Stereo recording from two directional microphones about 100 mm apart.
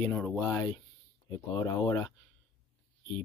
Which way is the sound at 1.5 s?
35° left (ahead or behind).